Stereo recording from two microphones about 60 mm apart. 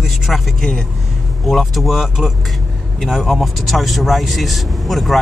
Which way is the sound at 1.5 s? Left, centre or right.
Centre.